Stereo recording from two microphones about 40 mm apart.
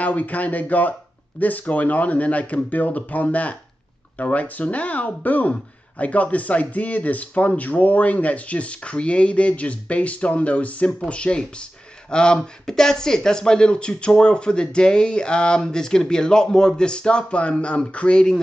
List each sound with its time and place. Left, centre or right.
0.0 s a man's voice: left